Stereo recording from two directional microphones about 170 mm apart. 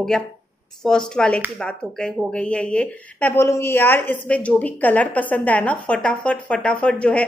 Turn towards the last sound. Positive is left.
turn(degrees=5)  # may be behind; listen again after turning